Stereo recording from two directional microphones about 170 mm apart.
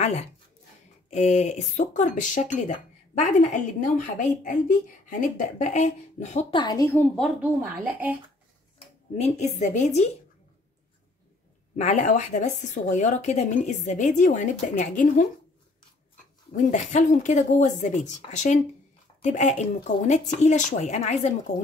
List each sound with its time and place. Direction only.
0.0 s speech: 40° left (ahead or behind)
5.6 s speech: 45° left (ahead or behind)
6.5 s a woman's voice: 25° left (ahead or behind)
7.8 s speech: 10° right (ahead or behind)
8.7 s speech: 40° left (ahead or behind)
11.7 s speech: 45° left (ahead or behind)
16.5 s speech: 45° left (ahead or behind)